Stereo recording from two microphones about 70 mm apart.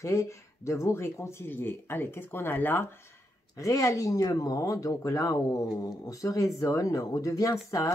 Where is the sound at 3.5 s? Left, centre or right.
Left.